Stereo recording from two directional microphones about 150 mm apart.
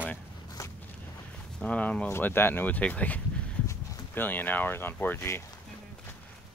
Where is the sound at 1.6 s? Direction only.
10° left (ahead or behind).